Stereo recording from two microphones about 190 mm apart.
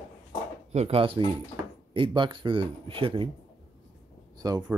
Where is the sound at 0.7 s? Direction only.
30° right (ahead or behind).